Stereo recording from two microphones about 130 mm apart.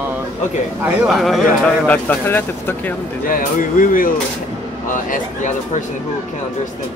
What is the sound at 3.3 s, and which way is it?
Speech, 90° left.